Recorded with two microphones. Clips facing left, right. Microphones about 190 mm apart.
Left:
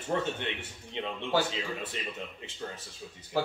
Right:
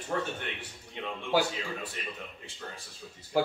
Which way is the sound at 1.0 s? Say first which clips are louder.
Right 1 dB; 20° left (ahead or behind).